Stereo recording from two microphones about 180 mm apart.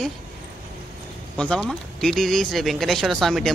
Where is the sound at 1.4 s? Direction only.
5° left (ahead or behind).